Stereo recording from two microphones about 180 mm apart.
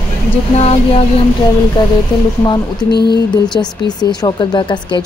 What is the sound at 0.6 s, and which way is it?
Speech, 35° left (ahead or behind).